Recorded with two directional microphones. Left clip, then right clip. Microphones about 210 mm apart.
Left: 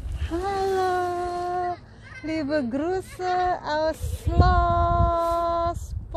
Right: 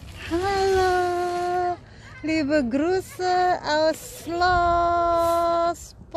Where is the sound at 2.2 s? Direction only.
15° right (ahead or behind).